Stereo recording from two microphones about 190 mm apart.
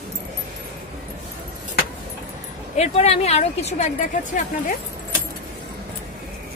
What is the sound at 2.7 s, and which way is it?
A woman's voice, 35° left (ahead or behind).